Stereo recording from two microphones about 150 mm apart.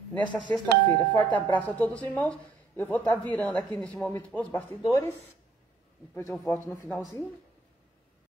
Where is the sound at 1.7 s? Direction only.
10° left (ahead or behind).